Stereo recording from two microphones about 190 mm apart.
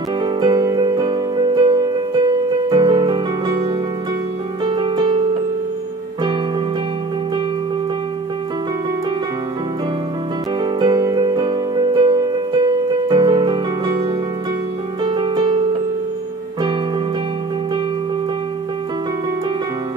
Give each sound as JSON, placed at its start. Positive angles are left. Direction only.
{"t": 0.2, "sound": "music", "side_deg": -20}
{"t": 4.6, "sound": "music", "side_deg": -25}
{"t": 10.6, "sound": "music", "side_deg": -25}
{"t": 15.0, "sound": "music", "side_deg": -25}